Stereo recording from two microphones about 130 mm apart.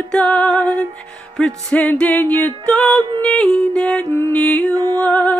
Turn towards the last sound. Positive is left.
turn(degrees=10)  # may be behind; listen again after turning